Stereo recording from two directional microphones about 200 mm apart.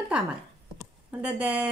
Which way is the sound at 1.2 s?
5° right (ahead or behind).